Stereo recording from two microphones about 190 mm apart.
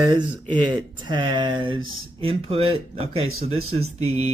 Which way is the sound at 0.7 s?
25° right (ahead or behind).